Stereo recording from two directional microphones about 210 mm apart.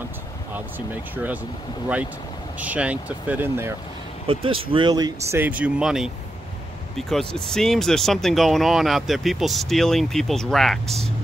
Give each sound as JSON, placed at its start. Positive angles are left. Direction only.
{"t": 0.7, "sound": "speech", "side_deg": -10}
{"t": 2.6, "sound": "speech", "side_deg": -5}
{"t": 4.3, "sound": "speech", "side_deg": -25}